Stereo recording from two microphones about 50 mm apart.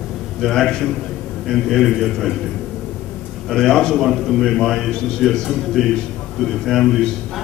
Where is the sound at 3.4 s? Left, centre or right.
Centre.